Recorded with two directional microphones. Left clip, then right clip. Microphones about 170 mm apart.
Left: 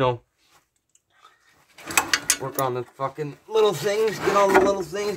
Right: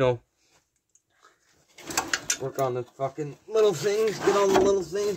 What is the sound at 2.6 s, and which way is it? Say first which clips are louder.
Speech: left 2 dB; 30° right (ahead or behind).